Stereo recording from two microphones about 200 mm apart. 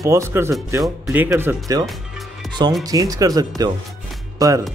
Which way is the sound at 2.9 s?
15° right (ahead or behind).